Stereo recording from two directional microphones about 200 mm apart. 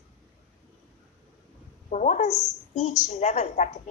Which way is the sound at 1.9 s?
35° left (ahead or behind).